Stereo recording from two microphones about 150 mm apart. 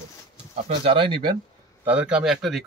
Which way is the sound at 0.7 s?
35° right (ahead or behind).